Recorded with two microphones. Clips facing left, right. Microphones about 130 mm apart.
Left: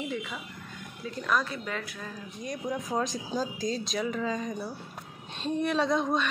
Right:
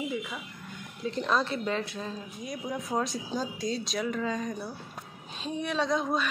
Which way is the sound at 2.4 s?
5° right (ahead or behind).